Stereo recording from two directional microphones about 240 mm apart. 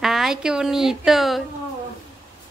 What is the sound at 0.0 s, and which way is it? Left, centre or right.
A woman's voice, centre.